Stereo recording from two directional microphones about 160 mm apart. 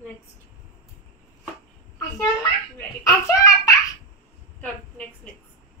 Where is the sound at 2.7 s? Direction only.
20° left (ahead or behind).